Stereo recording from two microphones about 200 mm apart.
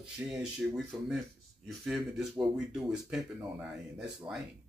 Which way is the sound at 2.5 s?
5° right (ahead or behind).